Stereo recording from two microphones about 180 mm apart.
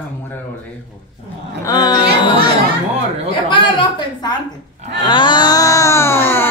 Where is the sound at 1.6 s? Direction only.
20° left (ahead or behind).